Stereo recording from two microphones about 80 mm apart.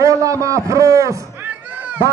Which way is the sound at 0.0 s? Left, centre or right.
Right.